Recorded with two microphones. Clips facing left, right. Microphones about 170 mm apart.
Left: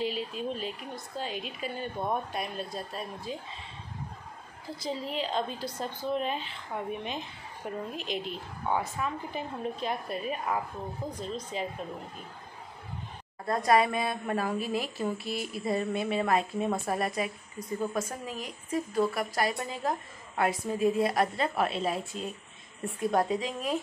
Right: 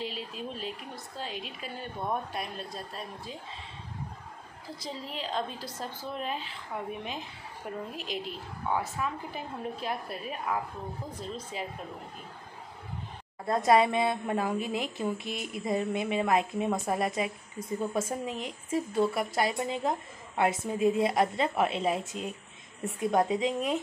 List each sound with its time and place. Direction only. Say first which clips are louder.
0.0 s a woman's voice: left 5 dB; centre (ahead or behind)
4.7 s a woman's voice: left 6 dB; centre (ahead or behind)
13.5 s a woman's voice: right 1 dB; 25° right (ahead or behind)